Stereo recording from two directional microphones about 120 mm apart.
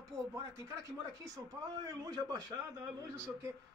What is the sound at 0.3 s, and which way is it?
A man's voice, 25° right (ahead or behind).